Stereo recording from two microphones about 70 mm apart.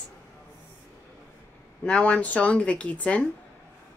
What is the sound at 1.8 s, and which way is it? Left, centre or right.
Speech, centre.